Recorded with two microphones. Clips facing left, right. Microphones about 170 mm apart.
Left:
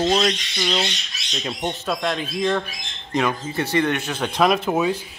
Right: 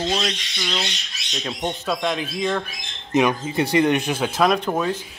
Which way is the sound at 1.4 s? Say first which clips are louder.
Even; centre (ahead or behind).